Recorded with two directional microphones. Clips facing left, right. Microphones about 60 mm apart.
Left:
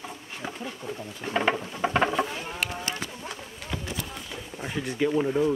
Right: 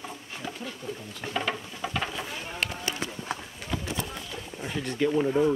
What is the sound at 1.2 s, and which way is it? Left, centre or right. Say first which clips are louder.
Patter: left 5 dB; left.